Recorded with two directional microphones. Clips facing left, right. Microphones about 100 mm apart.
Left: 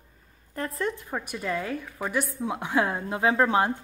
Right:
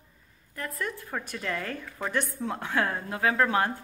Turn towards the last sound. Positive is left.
turn(degrees=20)  # may be behind; listen again after turning